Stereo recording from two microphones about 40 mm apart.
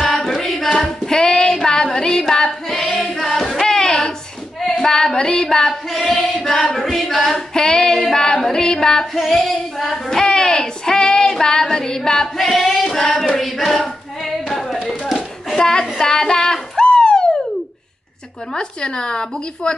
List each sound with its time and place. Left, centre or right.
0.0 s singing: centre
1.0 s child singing: centre
2.3 s female singing: centre
3.0 s singing: centre
4.6 s female singing: centre
5.9 s child singing: centre
9.2 s female singing: centre
10.0 s child singing: centre
12.4 s female singing: centre
12.8 s child singing: centre
13.4 s hands: centre
15.5 s child singing: centre
16.7 s a sound: centre
18.6 s speech: left